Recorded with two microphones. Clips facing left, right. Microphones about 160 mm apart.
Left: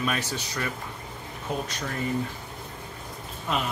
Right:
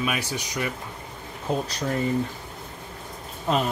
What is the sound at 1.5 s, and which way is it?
Speech, 30° right (ahead or behind).